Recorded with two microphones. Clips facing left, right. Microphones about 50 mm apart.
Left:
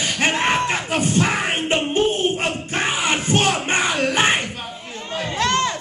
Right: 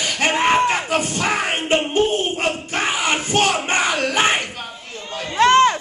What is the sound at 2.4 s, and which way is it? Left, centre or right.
Crowd, left.